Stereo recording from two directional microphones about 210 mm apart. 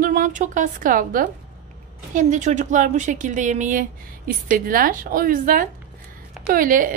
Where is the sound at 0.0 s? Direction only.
40° right (ahead or behind).